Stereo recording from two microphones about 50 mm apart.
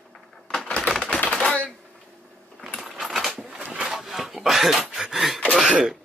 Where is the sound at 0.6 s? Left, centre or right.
Left.